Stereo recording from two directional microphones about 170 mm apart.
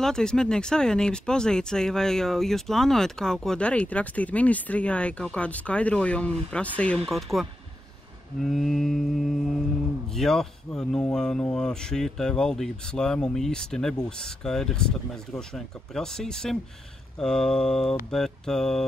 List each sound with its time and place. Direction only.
0.0 s speech: 5° left (ahead or behind)